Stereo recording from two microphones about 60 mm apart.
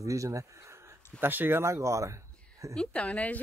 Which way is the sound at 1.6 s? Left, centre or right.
Right.